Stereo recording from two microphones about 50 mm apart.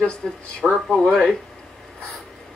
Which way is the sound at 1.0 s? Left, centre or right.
Centre.